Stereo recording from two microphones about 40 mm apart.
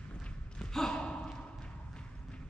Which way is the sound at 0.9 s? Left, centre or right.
Left.